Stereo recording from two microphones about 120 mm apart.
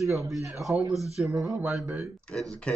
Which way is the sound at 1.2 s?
10° right (ahead or behind).